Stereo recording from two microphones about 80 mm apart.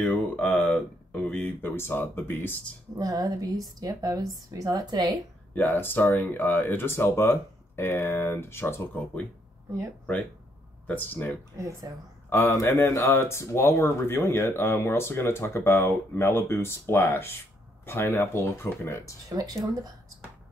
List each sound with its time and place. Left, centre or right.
0.0 s a sound: centre
1.6 s speech: left
3.0 s a woman's voice: right
5.7 s speech: left
10.9 s speech: left
12.3 s speech: left
19.2 s speech: right